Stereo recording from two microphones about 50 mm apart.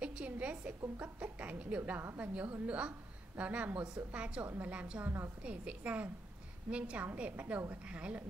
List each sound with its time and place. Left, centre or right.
0.0 s a woman's voice: right
1.8 s speech: right
2.1 s a woman's voice: right